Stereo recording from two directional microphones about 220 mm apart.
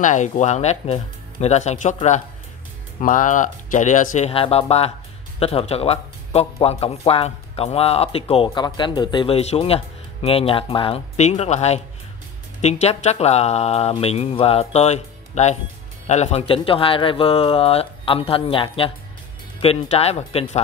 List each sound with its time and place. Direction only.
0.0 s speech: 35° left (ahead or behind)